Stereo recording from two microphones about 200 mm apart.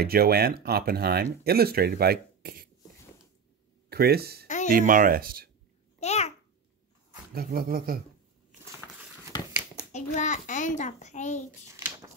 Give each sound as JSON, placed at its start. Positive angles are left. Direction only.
{"t": 0.0, "sound": "speech", "side_deg": -50}
{"t": 3.9, "sound": "speech", "side_deg": -50}
{"t": 5.9, "sound": "babbling", "side_deg": 35}
{"t": 7.3, "sound": "speech", "side_deg": -45}
{"t": 9.9, "sound": "a child's voice", "side_deg": 35}